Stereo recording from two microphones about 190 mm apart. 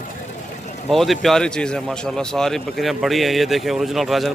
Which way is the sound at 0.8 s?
Centre (ahead or behind).